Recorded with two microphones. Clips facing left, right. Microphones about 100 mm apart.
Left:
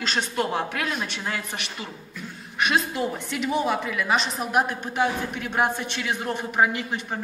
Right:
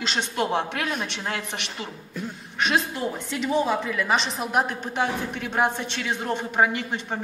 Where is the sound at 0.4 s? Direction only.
5° left (ahead or behind).